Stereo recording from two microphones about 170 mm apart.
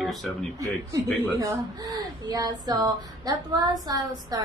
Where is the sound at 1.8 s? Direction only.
25° right (ahead or behind).